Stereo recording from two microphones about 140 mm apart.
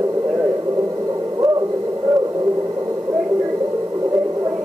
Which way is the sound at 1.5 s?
25° right (ahead or behind).